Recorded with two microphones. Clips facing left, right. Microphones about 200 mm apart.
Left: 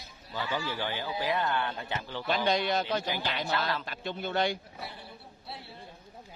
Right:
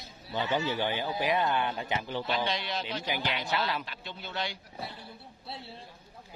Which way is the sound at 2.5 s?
45° left (ahead or behind).